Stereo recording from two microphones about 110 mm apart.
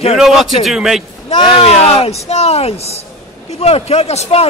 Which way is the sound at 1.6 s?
70° left (ahead or behind).